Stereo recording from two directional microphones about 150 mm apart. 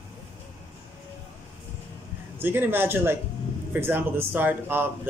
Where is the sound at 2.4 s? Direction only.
15° right (ahead or behind).